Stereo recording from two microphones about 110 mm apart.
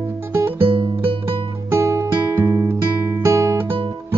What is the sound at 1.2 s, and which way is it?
Music, 25° right (ahead or behind).